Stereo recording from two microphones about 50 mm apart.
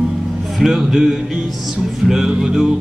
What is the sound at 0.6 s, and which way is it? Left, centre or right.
Music, centre.